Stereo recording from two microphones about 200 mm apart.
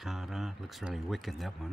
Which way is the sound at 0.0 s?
Centre (ahead or behind).